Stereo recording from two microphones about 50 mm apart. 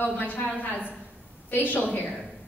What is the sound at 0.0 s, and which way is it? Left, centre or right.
A man's voice, left.